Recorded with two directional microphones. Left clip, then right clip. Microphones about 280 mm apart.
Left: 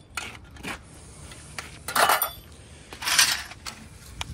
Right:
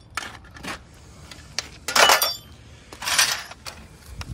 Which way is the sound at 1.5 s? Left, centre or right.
Right.